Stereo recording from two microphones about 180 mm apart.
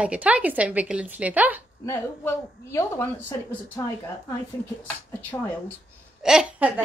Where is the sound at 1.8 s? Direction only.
15° left (ahead or behind).